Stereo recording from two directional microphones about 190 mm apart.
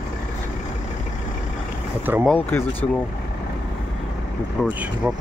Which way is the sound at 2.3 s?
10° left (ahead or behind).